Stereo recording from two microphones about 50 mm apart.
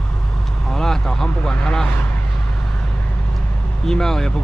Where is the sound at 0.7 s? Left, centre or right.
Centre.